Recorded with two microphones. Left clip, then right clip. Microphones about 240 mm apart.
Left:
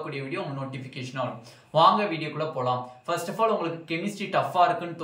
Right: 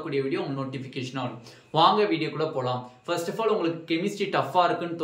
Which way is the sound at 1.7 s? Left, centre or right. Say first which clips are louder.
Even; centre.